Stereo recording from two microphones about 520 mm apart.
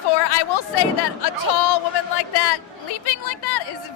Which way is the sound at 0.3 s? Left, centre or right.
Left.